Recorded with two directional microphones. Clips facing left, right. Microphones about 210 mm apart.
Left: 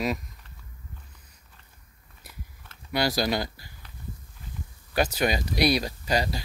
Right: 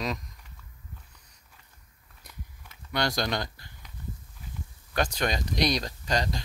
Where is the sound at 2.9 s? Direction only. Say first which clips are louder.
Left 3 dB; 5° left (ahead or behind).